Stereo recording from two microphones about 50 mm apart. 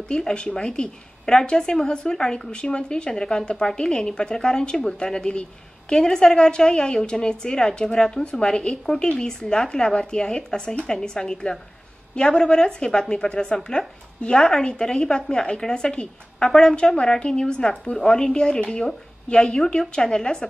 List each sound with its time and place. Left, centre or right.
0.1 s a woman's voice: centre